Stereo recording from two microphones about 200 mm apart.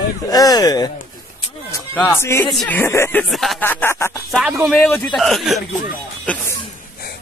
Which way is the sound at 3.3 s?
Centre (ahead or behind).